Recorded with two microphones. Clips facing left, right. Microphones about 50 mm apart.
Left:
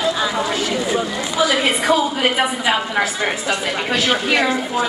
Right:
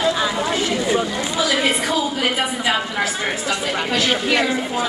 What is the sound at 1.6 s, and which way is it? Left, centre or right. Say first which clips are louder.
Speech: left 3 dB; centre.